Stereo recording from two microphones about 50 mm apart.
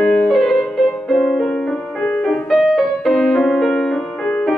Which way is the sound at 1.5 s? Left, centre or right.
Centre.